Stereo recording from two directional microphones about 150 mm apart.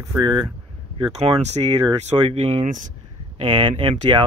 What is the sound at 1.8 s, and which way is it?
Speech, 30° right (ahead or behind).